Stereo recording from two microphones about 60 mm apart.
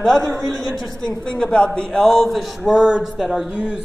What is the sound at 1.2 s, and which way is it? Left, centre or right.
Speech, centre.